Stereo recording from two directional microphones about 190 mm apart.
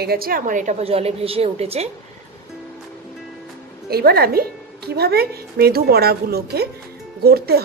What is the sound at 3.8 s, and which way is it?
A woman's voice, 55° right (ahead or behind).